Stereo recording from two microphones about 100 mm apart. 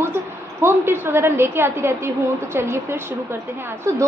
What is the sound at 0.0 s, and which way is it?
A woman's voice, 25° right (ahead or behind).